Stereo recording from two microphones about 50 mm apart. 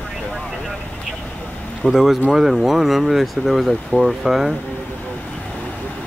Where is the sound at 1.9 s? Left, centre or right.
Centre.